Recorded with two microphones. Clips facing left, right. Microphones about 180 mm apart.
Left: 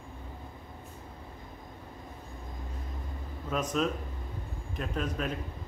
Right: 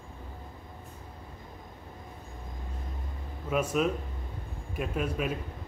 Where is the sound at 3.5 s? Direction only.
10° right (ahead or behind).